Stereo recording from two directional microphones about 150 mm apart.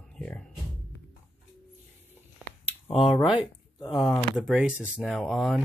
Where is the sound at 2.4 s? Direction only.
10° right (ahead or behind).